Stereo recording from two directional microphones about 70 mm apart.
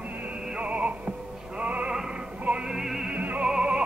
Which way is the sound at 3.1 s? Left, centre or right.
Right.